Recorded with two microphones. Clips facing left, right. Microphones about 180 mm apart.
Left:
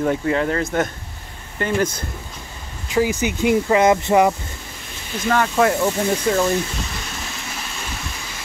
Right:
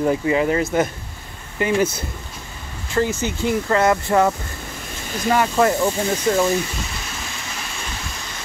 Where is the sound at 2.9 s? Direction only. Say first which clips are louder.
Left 2 dB; 15° left (ahead or behind).